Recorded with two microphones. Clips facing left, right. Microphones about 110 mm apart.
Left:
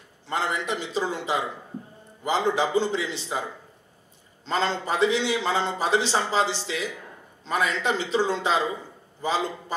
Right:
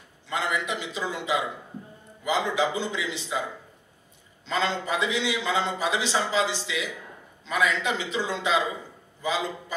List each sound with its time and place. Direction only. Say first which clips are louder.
0.3 s a man's voice: left 1 dB; 35° left (ahead or behind)
4.5 s a man's voice: left 1 dB; 35° left (ahead or behind)